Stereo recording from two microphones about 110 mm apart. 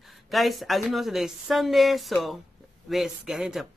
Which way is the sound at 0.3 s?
Centre (ahead or behind).